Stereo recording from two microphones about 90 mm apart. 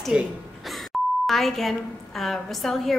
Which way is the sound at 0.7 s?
Centre (ahead or behind).